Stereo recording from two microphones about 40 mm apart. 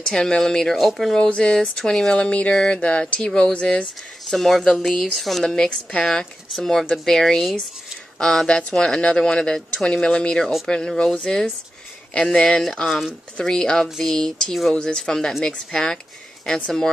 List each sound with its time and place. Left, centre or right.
0.0 s speech: centre
0.7 s speech: centre
1.1 s speech: left
1.8 s speech: centre
4.3 s speech: centre
5.6 s speech: centre
6.5 s speech: centre
14.7 s speech: left